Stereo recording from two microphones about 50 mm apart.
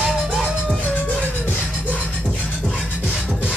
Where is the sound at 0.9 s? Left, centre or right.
Left.